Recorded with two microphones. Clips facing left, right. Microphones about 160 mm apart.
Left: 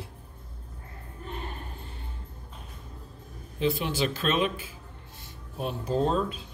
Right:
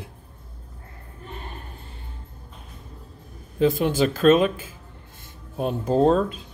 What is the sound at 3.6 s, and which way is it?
Speech, 45° right (ahead or behind).